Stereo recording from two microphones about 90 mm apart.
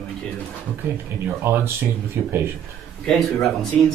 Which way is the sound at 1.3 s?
25° right (ahead or behind).